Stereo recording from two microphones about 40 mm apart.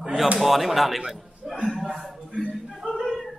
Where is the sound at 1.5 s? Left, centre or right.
Centre.